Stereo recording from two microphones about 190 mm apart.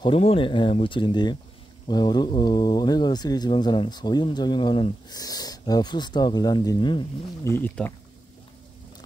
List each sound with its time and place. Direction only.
0.0 s speech: 30° left (ahead or behind)
7.5 s speech: 10° left (ahead or behind)